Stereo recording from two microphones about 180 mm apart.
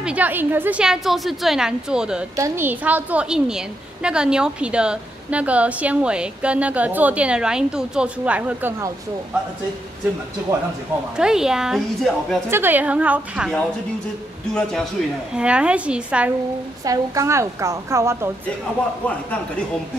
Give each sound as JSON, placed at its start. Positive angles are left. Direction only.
{"t": 0.0, "sound": "a woman's voice", "side_deg": -10}
{"t": 2.3, "sound": "a woman's voice", "side_deg": -15}
{"t": 11.1, "sound": "a woman's voice", "side_deg": -5}
{"t": 12.4, "sound": "a woman's voice", "side_deg": -10}
{"t": 14.5, "sound": "a woman's voice", "side_deg": 5}
{"t": 16.8, "sound": "a woman's voice", "side_deg": -20}